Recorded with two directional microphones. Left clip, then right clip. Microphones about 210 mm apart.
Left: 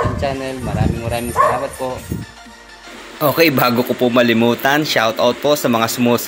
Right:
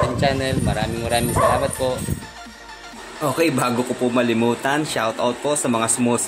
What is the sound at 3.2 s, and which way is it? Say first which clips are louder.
Speech: left 6 dB; 15° left (ahead or behind).